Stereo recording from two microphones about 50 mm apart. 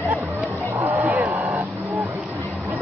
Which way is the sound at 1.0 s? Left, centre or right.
Right.